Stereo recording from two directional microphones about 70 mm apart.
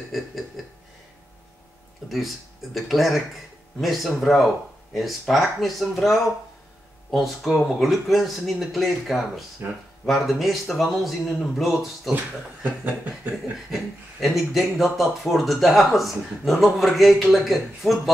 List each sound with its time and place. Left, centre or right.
0.6 s a sound: centre
2.0 s speech: centre
9.6 s speech: right
10.0 s speech: centre
12.6 s chuckle: right
13.7 s speech: centre